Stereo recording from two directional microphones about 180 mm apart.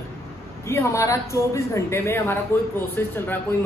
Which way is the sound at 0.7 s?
15° left (ahead or behind).